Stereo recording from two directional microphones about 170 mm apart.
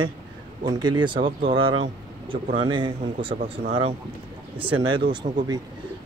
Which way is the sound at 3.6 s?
40° right (ahead or behind).